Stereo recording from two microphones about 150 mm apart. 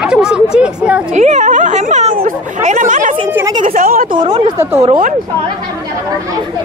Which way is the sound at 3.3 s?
20° right (ahead or behind).